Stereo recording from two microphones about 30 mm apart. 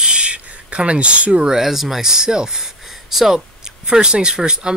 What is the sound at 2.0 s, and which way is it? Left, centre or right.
Speech, right.